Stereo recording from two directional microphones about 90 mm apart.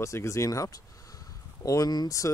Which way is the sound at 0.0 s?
35° left (ahead or behind).